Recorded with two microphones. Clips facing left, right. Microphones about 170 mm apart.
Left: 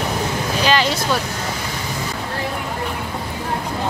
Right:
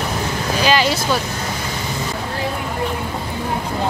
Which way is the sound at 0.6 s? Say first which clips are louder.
Right 1 dB; 5° right (ahead or behind).